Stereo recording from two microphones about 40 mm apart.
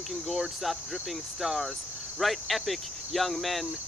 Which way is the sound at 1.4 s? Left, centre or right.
Centre.